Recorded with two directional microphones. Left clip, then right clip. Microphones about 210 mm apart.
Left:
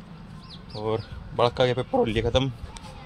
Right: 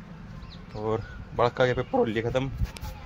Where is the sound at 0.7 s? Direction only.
5° left (ahead or behind).